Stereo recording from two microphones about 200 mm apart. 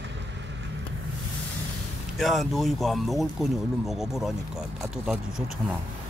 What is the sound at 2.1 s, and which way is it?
Speech, centre (ahead or behind).